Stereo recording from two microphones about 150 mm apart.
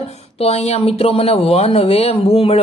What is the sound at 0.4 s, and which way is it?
A man's voice, 45° left (ahead or behind).